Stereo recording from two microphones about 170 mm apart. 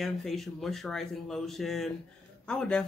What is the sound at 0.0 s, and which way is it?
Speech, centre (ahead or behind).